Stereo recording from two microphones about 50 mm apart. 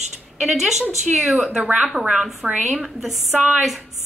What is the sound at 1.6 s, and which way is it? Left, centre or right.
Speech, right.